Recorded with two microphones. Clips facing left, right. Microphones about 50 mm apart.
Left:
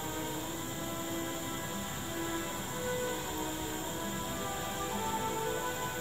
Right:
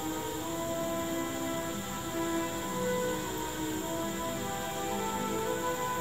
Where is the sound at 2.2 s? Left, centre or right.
Right.